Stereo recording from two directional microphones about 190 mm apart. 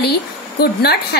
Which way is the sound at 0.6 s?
55° left (ahead or behind).